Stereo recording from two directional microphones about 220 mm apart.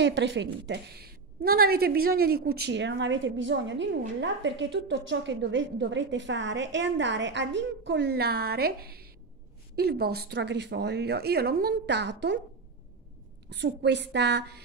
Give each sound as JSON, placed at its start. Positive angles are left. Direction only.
{"t": 0.0, "sound": "a woman's voice", "side_deg": -55}
{"t": 13.5, "sound": "a woman's voice", "side_deg": -50}